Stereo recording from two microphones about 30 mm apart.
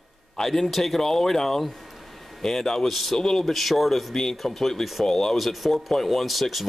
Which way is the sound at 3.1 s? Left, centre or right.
Centre.